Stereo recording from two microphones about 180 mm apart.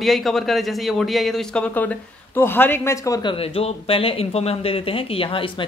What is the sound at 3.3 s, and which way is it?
Speech, 35° left (ahead or behind).